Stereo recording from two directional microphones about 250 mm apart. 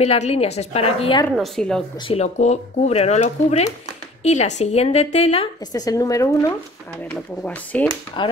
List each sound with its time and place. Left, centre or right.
0.0 s a woman's voice: left
1.3 s a woman's voice: centre
2.0 s a woman's voice: left; by 7.9 s centre
8.2 s a woman's voice: centre